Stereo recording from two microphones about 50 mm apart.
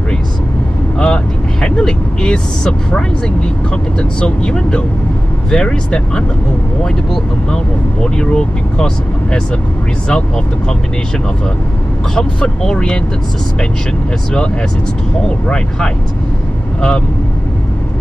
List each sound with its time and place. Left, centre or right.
0.9 s speech: centre
12.2 s speech: centre
15.2 s speech: centre